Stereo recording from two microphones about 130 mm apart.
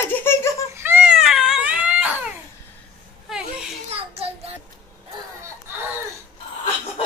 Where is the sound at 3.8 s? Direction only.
50° right (ahead or behind).